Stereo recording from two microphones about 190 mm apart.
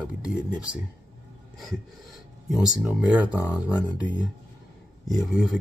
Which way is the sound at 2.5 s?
5° right (ahead or behind).